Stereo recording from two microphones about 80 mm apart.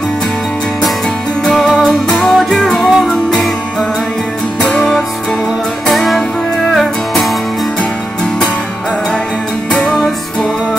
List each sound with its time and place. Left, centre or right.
1.4 s music: centre
4.6 s music: centre
9.7 s music: centre